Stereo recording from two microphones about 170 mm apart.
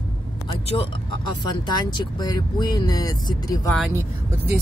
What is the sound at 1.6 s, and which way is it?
Speech, 25° left (ahead or behind).